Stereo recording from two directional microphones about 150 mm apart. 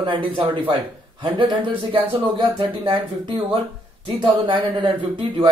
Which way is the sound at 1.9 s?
30° right (ahead or behind).